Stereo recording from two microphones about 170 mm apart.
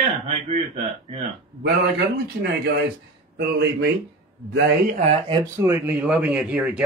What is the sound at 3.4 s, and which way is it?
Speech, 70° right (ahead or behind).